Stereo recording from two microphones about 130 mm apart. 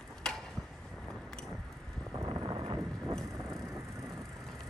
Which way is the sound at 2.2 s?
30° right (ahead or behind).